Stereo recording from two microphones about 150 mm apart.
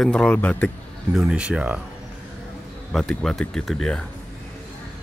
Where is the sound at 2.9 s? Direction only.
5° left (ahead or behind).